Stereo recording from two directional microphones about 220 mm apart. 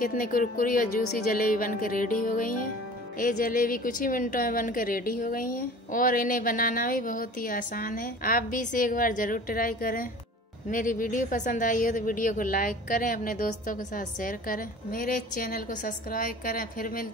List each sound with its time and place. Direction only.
0.0 s a woman's voice: 40° left (ahead or behind)